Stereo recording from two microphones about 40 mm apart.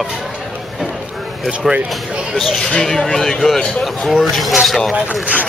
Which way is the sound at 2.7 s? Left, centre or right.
Centre.